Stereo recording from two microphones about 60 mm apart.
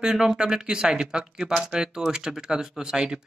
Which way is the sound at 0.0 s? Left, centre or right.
Centre.